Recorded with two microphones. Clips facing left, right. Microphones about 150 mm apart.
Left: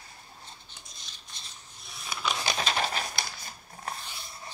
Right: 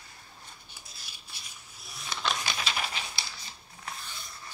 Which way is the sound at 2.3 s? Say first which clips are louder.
Left 4 dB; 35° left (ahead or behind).